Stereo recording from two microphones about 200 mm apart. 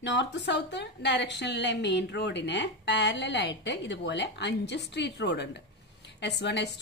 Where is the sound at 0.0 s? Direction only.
60° left (ahead or behind).